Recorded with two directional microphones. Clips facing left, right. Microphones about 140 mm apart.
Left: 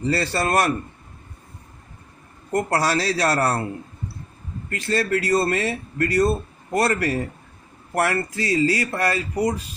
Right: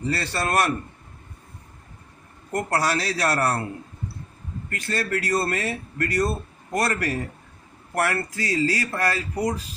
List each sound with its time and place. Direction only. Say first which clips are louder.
0.0 s speech: left 4 dB; 30° left (ahead or behind)
2.5 s speech: left 3 dB; 30° left (ahead or behind)
4.6 s speech: left 5 dB; 25° left (ahead or behind)